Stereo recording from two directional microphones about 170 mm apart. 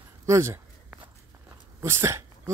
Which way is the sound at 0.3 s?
15° right (ahead or behind).